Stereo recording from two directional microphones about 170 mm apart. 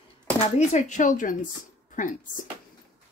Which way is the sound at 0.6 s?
40° left (ahead or behind).